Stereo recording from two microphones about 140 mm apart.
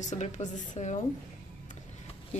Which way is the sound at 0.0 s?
60° left (ahead or behind).